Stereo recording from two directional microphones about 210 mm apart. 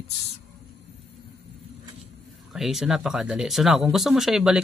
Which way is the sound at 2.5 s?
Centre (ahead or behind).